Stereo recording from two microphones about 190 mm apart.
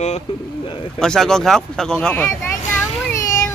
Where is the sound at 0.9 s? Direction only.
5° left (ahead or behind).